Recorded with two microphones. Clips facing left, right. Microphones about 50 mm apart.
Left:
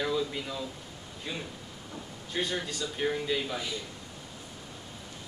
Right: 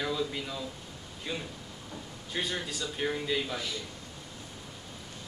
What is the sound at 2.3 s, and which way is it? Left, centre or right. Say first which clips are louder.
A man's voice: left 2 dB; centre.